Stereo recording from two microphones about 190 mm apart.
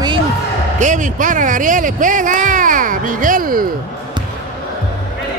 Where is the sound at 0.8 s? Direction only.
40° right (ahead or behind).